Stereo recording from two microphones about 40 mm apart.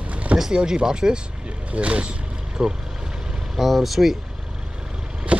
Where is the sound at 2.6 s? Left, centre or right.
Centre.